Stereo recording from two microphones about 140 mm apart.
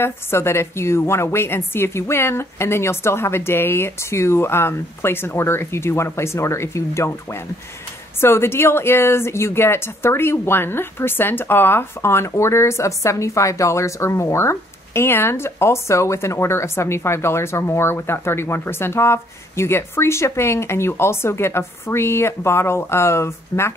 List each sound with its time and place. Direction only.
0.0 s a woman's voice: 15° left (ahead or behind)